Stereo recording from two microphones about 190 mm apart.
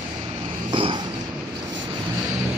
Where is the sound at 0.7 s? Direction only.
25° right (ahead or behind).